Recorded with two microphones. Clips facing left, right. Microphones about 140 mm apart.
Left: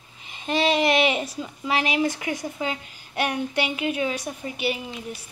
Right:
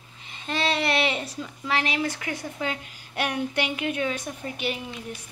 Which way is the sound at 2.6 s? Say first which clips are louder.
Left 1 dB; centre (ahead or behind).